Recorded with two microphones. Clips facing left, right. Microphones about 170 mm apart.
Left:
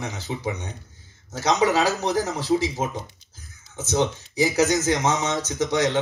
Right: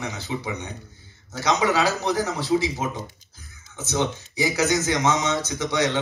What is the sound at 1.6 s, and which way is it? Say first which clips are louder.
A man's voice: left 2 dB; 40° left (ahead or behind).